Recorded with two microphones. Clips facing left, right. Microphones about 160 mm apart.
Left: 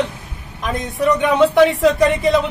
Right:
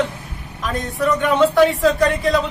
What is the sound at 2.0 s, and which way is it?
Speech, centre (ahead or behind).